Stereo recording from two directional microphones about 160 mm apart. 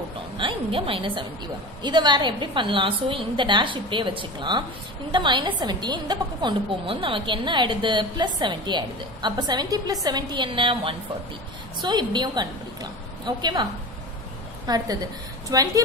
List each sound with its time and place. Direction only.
0.4 s a woman's voice: 35° right (ahead or behind)
14.7 s a woman's voice: 25° right (ahead or behind)